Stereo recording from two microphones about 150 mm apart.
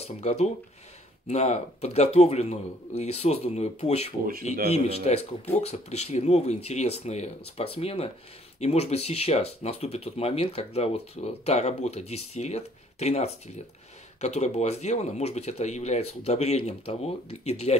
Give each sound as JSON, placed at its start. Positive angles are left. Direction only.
{"t": 0.0, "sound": "speech", "side_deg": 45}